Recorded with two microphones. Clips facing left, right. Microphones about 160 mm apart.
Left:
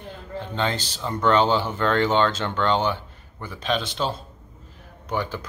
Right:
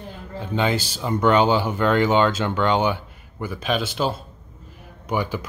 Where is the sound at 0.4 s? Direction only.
10° right (ahead or behind).